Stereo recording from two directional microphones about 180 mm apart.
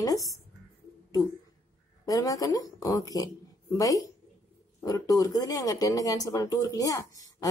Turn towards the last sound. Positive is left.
turn(degrees=20)  # may be behind; listen again after turning